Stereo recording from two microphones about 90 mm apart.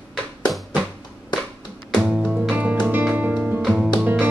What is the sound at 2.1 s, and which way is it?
Music, 10° right (ahead or behind).